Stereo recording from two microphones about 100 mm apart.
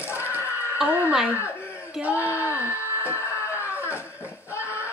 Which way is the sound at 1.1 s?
5° right (ahead or behind).